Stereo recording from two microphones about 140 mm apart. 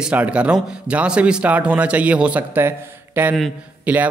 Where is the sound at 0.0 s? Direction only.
10° right (ahead or behind).